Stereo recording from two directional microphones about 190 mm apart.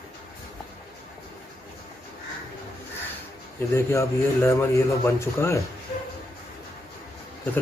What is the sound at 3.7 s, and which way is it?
A man's voice, 15° left (ahead or behind).